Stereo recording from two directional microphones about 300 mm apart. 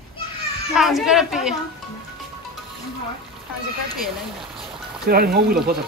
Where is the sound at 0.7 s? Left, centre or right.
Centre.